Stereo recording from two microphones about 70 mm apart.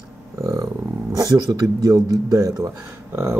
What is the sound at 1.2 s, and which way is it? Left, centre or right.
Speech, right.